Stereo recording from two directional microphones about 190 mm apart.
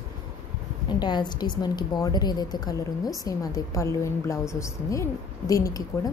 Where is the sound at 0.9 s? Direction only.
25° left (ahead or behind).